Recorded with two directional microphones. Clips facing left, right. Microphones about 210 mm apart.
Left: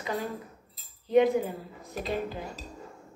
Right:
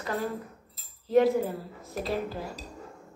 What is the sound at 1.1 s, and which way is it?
Speech, 20° left (ahead or behind).